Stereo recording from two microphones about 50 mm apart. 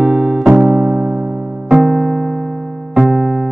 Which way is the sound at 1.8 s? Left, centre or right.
Centre.